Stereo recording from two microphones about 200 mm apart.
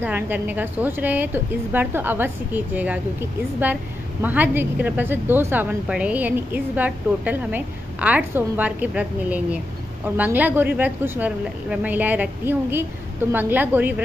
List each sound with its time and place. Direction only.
0.0 s a woman's voice: 10° right (ahead or behind)